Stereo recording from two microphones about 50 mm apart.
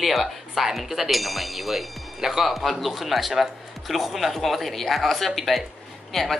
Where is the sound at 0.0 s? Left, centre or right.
Centre.